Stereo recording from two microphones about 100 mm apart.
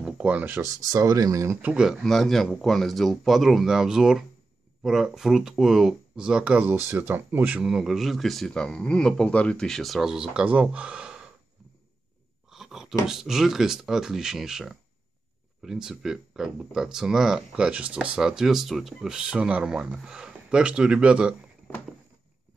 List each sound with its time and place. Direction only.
0.0 s speech: 15° right (ahead or behind)
0.9 s speech: 35° right (ahead or behind)
1.6 s speech: 10° right (ahead or behind)
7.6 s speech: 5° right (ahead or behind)
12.4 s a sound: 5° right (ahead or behind)
13.0 s speech: 5° right (ahead or behind)